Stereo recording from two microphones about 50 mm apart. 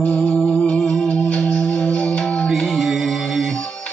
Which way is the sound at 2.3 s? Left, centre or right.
Centre.